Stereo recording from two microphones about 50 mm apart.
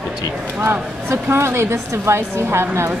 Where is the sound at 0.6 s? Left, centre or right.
Right.